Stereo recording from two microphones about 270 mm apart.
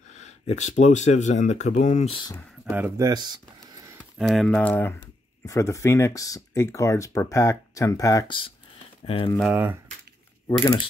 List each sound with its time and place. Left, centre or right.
0.5 s speech: left
2.3 s speech: centre
4.2 s speech: centre; by 9.3 s left
9.3 s speech: centre